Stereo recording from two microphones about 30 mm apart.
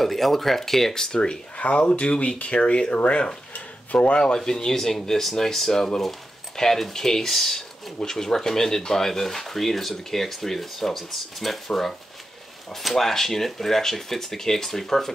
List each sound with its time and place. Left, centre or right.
0.0 s speech: centre; by 1.4 s left
1.6 s speech: left
3.5 s a sound: left
4.5 s speech: centre